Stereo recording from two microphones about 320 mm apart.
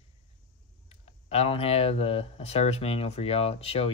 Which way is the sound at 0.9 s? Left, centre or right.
Centre.